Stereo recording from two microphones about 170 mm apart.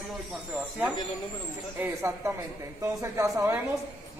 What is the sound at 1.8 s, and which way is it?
Speech, 15° right (ahead or behind).